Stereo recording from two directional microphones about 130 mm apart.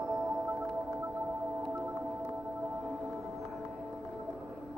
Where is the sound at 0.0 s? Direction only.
Centre (ahead or behind).